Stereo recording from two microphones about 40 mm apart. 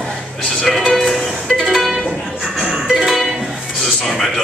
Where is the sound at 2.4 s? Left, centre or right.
Centre.